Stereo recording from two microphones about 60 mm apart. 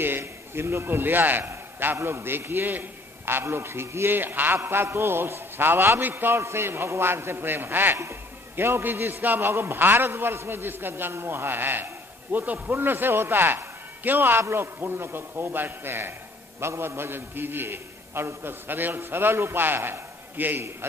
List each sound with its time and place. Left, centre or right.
0.0 s a man's voice: right
1.4 s a sound: right
2.0 s a man's voice: right